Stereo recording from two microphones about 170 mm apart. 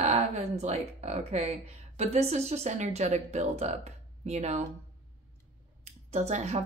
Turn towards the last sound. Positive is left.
turn(degrees=-40)  # may be behind; listen again after turning